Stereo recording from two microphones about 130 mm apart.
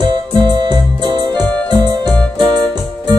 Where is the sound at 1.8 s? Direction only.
35° right (ahead or behind).